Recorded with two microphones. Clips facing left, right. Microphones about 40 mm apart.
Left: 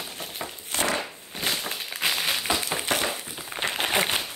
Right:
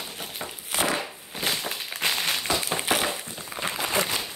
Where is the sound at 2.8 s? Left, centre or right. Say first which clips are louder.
Right 1 dB; centre.